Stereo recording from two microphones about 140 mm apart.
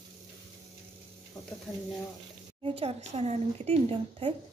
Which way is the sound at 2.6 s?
45° right (ahead or behind).